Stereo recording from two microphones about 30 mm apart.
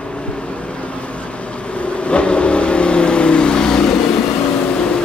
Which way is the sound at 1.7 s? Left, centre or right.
Left.